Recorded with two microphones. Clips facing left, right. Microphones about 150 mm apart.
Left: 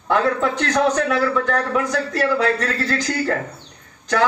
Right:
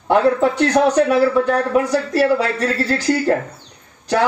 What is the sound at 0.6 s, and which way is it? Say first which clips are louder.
A man's voice: right 5 dB; 20° right (ahead or behind).